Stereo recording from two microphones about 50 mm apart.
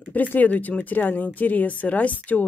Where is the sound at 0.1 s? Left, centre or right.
Left.